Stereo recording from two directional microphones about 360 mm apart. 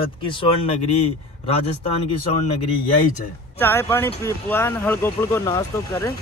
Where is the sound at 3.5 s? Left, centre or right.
Centre.